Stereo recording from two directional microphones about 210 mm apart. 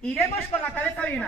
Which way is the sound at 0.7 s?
10° left (ahead or behind).